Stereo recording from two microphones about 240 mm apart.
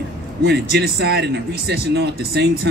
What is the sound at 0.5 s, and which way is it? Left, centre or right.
A man's voice, right.